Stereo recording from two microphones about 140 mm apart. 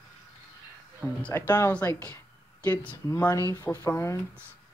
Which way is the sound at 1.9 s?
30° right (ahead or behind).